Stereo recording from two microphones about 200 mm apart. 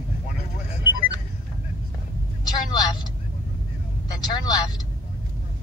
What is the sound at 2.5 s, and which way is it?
Speech, 20° left (ahead or behind).